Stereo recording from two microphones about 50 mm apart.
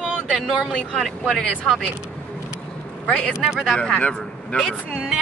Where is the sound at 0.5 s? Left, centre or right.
Centre.